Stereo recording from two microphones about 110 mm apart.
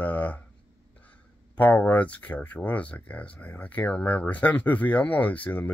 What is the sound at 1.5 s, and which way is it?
Speech, 15° left (ahead or behind).